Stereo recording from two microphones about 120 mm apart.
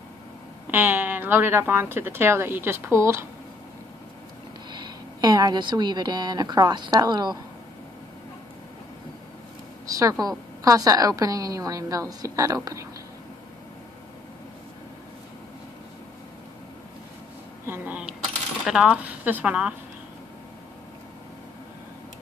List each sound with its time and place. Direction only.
0.7 s speech: 15° right (ahead or behind)
4.7 s a woman's voice: 35° right (ahead or behind)
9.8 s speech: 30° right (ahead or behind)
17.6 s speech: 15° right (ahead or behind)